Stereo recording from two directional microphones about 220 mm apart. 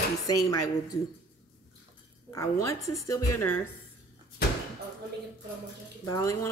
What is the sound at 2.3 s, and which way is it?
Speech, 15° left (ahead or behind).